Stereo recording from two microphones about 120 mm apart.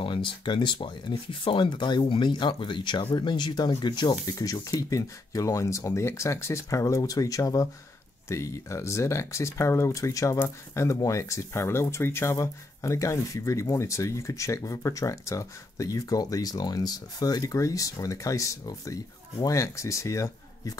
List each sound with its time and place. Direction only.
0.0 s speech: 45° left (ahead or behind); by 20.7 s 25° left (ahead or behind)